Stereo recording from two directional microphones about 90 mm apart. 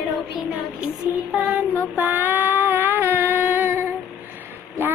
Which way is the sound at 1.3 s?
20° right (ahead or behind).